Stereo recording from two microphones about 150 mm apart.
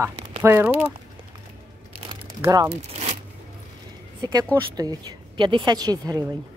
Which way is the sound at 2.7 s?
45° right (ahead or behind).